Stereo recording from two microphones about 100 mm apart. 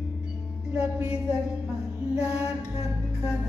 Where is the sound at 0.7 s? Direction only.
10° right (ahead or behind).